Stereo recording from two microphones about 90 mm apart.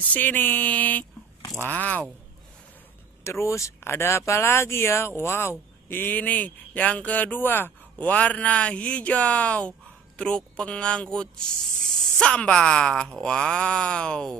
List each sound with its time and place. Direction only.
0.1 s speech: 20° left (ahead or behind)
3.3 s speech: 30° left (ahead or behind); by 14.3 s 10° left (ahead or behind)